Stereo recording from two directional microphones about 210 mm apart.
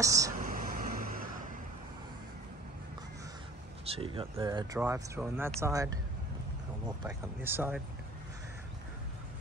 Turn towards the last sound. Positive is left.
turn(degrees=-10)  # may be behind; listen again after turning